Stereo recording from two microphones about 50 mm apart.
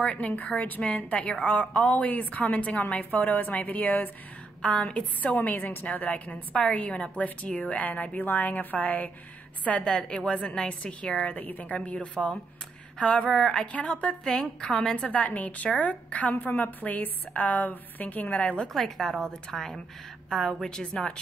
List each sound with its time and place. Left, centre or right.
0.0 s a woman's voice: left
4.6 s a woman's voice: centre
11.3 s a woman's voice: left; by 13.7 s centre
13.7 s a woman's voice: left
14.2 s a woman's voice: centre
15.0 s a woman's voice: left
18.7 s a woman's voice: centre
20.6 s a woman's voice: centre